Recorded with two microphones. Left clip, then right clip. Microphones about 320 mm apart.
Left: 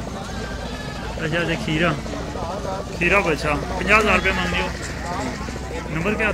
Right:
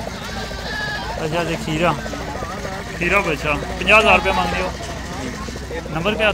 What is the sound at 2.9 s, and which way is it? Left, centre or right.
Speech, centre.